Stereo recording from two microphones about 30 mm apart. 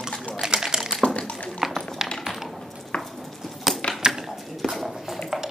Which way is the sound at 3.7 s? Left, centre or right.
Centre.